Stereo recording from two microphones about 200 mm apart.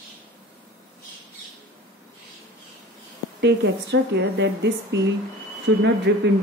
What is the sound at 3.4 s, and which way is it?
Speech, 60° right (ahead or behind).